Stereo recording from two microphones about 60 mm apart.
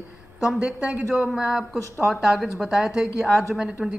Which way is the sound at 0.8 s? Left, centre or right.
Right.